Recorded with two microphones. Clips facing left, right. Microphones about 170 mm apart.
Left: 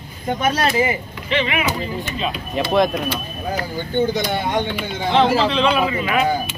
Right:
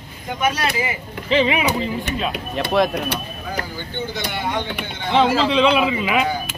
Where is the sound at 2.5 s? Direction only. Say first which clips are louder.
Left 2 dB; centre (ahead or behind).